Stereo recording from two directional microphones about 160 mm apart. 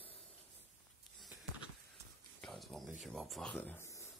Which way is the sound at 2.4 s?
Centre (ahead or behind).